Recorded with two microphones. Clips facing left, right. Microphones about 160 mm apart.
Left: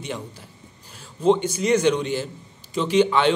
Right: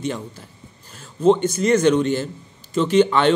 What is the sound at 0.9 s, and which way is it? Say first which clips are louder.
Speech: right 3 dB; 10° left (ahead or behind).